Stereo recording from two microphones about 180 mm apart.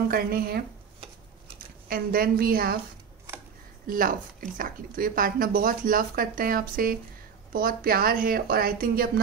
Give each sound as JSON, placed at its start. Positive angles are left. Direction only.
{"t": 0.1, "sound": "speech", "side_deg": -55}
{"t": 1.9, "sound": "speech", "side_deg": -55}
{"t": 3.8, "sound": "speech", "side_deg": -50}